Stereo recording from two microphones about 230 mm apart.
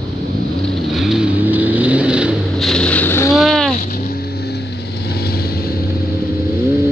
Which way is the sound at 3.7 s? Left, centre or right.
Left.